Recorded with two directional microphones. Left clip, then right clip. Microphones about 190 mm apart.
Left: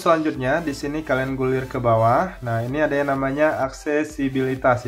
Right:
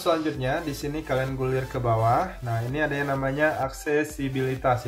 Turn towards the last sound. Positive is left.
turn(degrees=30)  # may be behind; listen again after turning